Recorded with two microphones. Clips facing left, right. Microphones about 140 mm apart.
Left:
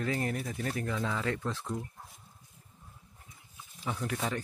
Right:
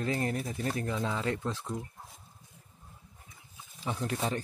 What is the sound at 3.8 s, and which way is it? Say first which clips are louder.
Speech: right 1 dB; 25° right (ahead or behind).